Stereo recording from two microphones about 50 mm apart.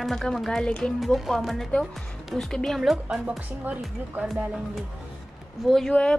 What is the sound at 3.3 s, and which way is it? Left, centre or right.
A woman's voice, right.